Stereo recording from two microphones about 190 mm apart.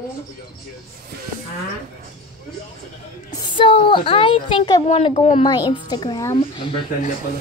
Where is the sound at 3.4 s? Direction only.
25° left (ahead or behind).